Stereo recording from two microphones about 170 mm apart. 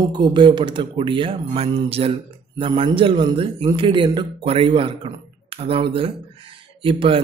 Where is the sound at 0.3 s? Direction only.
25° right (ahead or behind).